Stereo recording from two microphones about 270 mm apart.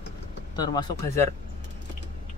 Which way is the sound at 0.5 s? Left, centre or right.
Centre.